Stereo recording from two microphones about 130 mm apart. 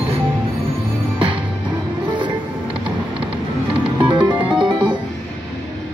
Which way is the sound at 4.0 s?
35° right (ahead or behind).